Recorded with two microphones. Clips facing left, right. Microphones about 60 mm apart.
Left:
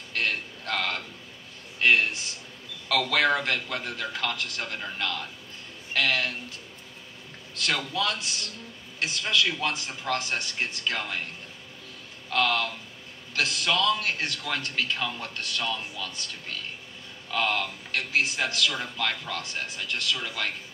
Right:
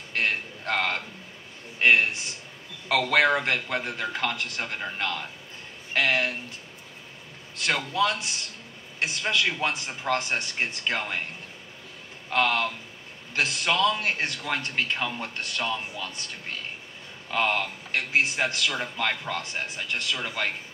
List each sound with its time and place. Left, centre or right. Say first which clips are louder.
0.1 s a sound: right 2 dB; right
2.9 s speech: right 2 dB; right
7.5 s speech: right 2 dB; right
12.3 s speech: right 1 dB; right